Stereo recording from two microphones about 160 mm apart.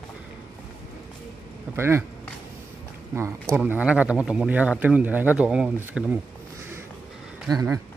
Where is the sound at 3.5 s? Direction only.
10° right (ahead or behind).